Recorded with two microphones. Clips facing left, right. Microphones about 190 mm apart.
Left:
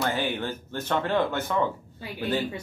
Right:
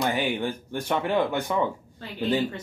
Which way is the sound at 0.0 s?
15° right (ahead or behind).